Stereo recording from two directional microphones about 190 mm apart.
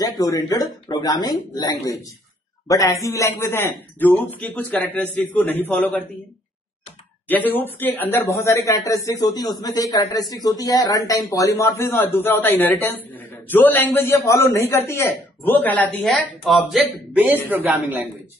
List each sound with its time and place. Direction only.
0.2 s speech: 20° left (ahead or behind)
7.2 s a man's voice: 10° left (ahead or behind); by 18.0 s 10° right (ahead or behind)